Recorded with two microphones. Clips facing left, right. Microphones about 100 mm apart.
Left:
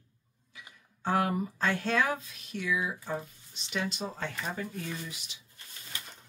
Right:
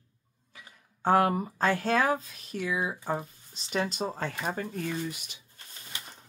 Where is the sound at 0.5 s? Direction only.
45° right (ahead or behind).